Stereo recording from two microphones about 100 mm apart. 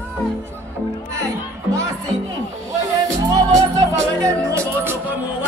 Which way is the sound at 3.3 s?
35° right (ahead or behind).